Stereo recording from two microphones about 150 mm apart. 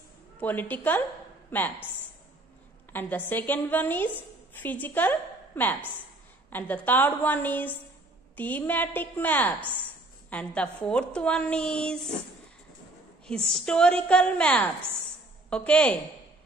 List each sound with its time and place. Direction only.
0.4 s a woman's voice: 10° left (ahead or behind)
2.9 s a woman's voice: 10° left (ahead or behind)
13.3 s a woman's voice: 5° left (ahead or behind)